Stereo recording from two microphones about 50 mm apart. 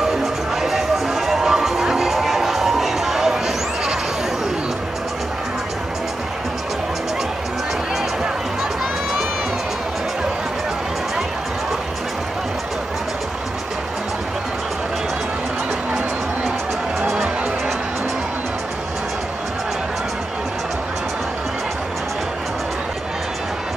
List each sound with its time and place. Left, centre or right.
0.0 s music: centre